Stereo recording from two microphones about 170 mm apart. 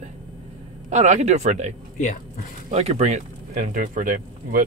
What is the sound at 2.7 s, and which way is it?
Speech, 40° right (ahead or behind).